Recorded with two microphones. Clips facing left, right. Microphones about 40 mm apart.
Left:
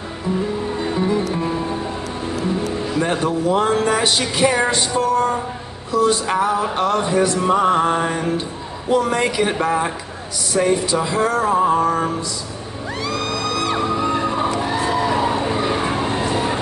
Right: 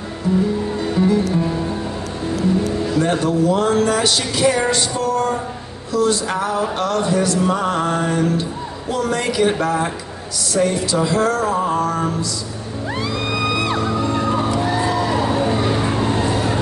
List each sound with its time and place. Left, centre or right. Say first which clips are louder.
0.7 s music: right 2 dB; centre
3.0 s music: right 2 dB; left
13.3 s music: right 3 dB; centre
14.0 s music: even; left
14.6 s vehicle: right 1 dB; centre